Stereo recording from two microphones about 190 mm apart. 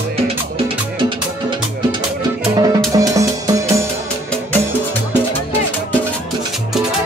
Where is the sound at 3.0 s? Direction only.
15° right (ahead or behind).